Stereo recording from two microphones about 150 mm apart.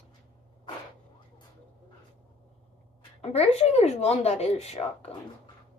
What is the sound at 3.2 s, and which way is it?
Speech, 45° left (ahead or behind).